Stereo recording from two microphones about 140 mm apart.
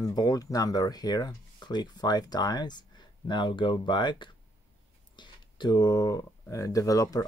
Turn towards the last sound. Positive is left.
turn(degrees=25)  # may be behind; listen again after turning